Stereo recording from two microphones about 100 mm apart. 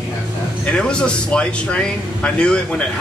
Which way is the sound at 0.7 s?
10° left (ahead or behind).